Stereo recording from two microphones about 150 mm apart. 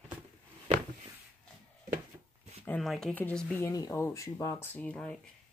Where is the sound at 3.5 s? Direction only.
20° left (ahead or behind).